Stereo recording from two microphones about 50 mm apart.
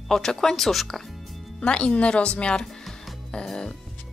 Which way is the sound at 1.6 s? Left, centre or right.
Left.